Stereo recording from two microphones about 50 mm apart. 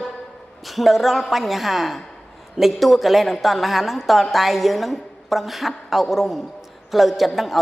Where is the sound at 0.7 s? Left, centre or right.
Centre.